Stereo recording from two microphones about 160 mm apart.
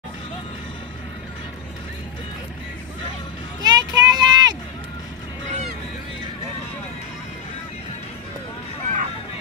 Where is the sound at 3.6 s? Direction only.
25° right (ahead or behind).